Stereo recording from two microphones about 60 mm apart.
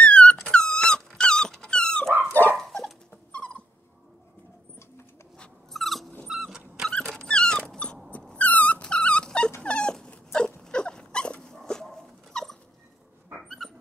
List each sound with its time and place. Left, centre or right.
0.0 s dog: centre
3.3 s dog: left
5.7 s dog: centre
7.1 s dog: centre
8.4 s dog: left; by 13.7 s centre